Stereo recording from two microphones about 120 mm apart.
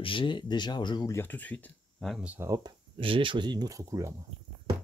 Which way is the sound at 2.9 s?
45° right (ahead or behind).